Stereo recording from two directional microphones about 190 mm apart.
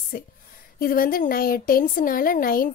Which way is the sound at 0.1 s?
50° left (ahead or behind).